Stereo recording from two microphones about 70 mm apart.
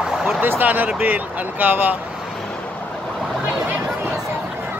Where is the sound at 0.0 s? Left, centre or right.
Centre.